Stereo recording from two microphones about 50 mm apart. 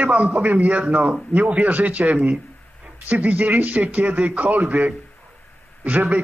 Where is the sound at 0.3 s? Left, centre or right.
Right.